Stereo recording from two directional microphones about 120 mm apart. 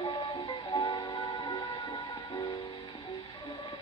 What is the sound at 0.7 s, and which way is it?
Music, 40° left (ahead or behind).